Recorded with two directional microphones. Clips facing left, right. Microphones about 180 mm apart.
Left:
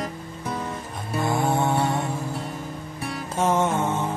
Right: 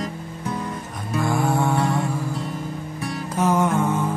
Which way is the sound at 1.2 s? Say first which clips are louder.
Right 1 dB; 25° left (ahead or behind).